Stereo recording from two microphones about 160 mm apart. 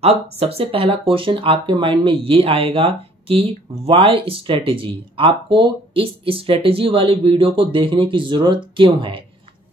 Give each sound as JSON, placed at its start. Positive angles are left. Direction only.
{"t": 0.0, "sound": "speech", "side_deg": -40}